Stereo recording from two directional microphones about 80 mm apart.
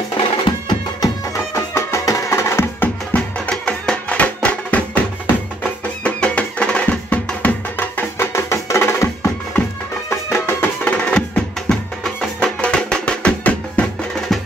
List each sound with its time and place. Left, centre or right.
0.2 s music: left
1.0 s music: left
3.1 s music: centre; by 9.3 s left
10.0 s music: left